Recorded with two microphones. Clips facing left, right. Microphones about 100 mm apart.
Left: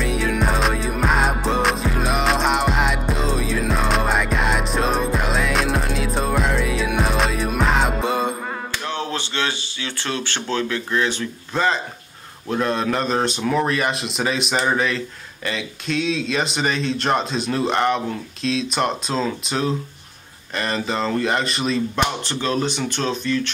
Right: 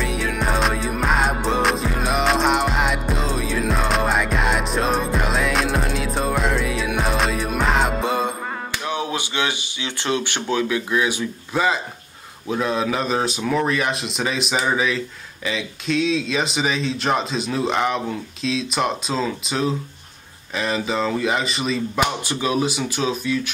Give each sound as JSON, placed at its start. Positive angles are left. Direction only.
{"t": 0.0, "sound": "music", "side_deg": 0}
{"t": 8.7, "sound": "speech", "side_deg": -15}